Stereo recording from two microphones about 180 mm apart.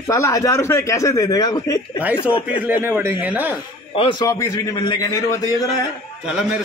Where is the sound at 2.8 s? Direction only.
10° right (ahead or behind).